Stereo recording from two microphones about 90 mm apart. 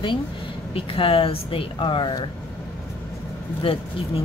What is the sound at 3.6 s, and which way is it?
Speech, 75° left (ahead or behind).